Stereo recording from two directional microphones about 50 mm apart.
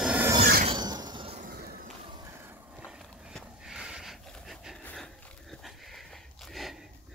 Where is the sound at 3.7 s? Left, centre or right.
Centre.